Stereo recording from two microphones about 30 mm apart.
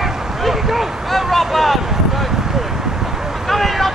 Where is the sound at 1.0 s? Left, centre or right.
Centre.